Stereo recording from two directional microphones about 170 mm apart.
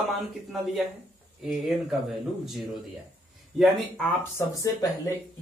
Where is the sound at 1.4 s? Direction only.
Centre (ahead or behind).